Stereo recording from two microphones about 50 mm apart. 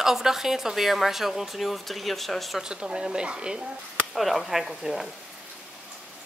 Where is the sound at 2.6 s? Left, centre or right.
Centre.